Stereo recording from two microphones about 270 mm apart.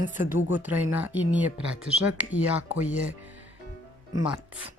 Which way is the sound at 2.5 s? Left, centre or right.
Right.